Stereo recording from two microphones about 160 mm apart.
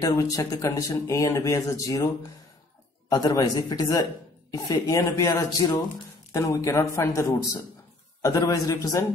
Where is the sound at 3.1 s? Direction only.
20° left (ahead or behind).